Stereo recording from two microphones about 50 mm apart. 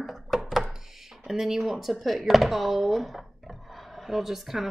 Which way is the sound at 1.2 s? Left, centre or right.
Centre.